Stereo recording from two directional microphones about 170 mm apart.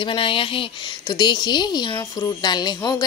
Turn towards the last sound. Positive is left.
turn(degrees=25)  # may be behind; listen again after turning